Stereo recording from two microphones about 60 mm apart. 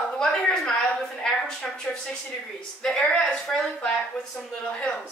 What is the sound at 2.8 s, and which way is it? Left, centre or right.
Speech, centre.